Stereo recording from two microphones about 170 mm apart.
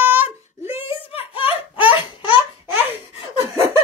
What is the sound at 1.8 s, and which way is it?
Babbling, 30° left (ahead or behind).